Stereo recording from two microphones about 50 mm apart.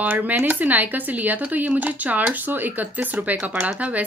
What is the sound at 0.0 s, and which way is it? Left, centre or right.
Speech, right.